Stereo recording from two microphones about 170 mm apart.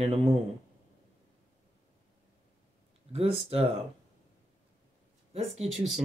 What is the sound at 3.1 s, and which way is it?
Speech, 35° right (ahead or behind).